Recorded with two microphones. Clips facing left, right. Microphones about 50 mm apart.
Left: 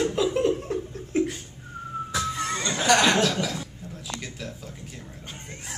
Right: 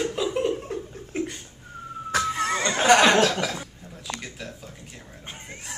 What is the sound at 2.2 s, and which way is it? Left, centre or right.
Music, right.